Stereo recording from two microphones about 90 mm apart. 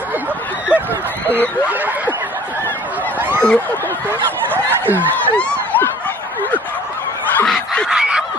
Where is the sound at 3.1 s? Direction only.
25° right (ahead or behind).